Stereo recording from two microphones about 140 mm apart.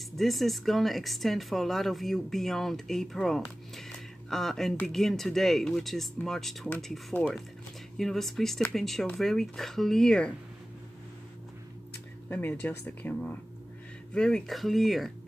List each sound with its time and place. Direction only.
0.2 s speech: centre (ahead or behind)
12.3 s speech: 15° left (ahead or behind)